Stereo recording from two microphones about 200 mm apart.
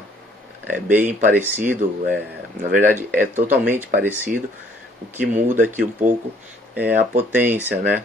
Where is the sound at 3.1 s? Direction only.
40° right (ahead or behind).